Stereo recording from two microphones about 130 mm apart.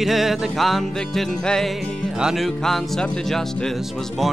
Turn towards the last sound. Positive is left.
turn(degrees=5)  # may be behind; listen again after turning